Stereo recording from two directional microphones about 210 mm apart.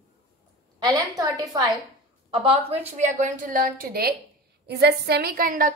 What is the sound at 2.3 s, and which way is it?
A woman's voice, 30° right (ahead or behind).